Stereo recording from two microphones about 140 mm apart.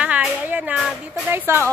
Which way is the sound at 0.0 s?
10° right (ahead or behind).